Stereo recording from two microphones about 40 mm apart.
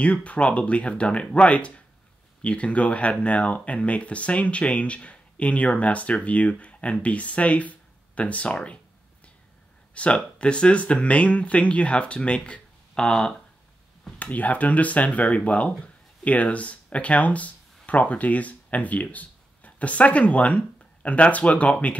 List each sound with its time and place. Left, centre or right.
0.0 s speech: left
9.9 s speech: left
14.1 s speech: left